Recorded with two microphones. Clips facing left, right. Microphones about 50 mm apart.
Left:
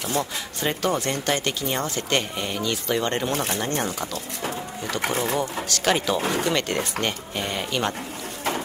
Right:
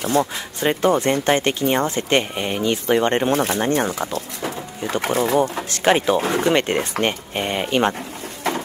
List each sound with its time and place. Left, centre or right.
0.0 s speech: right
3.6 s speech: right
5.6 s speech: right